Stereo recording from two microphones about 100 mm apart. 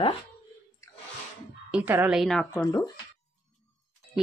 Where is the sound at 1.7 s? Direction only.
15° right (ahead or behind).